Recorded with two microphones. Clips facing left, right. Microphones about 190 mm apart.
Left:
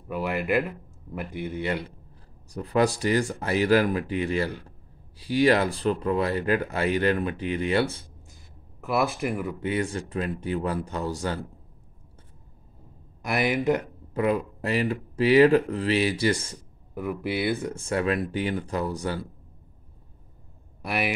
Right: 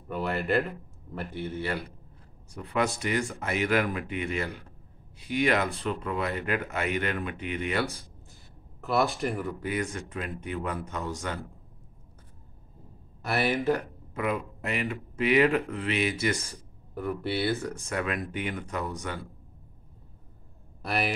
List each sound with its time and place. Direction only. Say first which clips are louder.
0.1 s speech: left 2 dB; 10° left (ahead or behind)
2.5 s speech: left 5 dB; 35° left (ahead or behind)
9.2 s speech: left 2 dB; 10° left (ahead or behind)
9.6 s speech: left 4 dB; 30° left (ahead or behind)
13.2 s speech: left 2 dB; 15° left (ahead or behind)
14.1 s speech: left 6 dB; 35° left (ahead or behind)
16.9 s speech: left 2 dB; 10° left (ahead or behind)
17.7 s speech: left 6 dB; 30° left (ahead or behind)
20.8 s a man's voice: left 2 dB; 10° left (ahead or behind)